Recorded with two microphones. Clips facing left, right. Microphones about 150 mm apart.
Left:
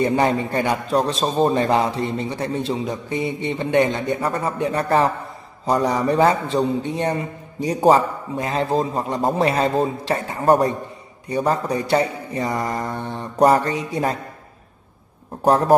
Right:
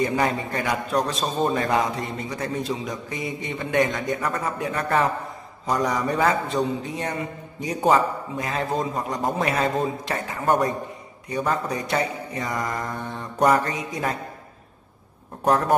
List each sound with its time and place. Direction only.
0.0 s a man's voice: 30° left (ahead or behind)
15.4 s a man's voice: 30° left (ahead or behind)